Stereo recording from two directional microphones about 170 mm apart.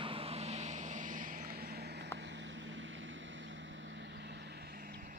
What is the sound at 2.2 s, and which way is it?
Vehicle, 90° right.